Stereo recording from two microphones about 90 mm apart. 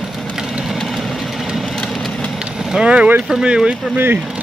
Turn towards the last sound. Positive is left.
turn(degrees=-25)  # may be behind; listen again after turning